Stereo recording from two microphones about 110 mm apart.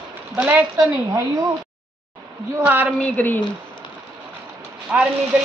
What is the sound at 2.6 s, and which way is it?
Speech, 15° right (ahead or behind).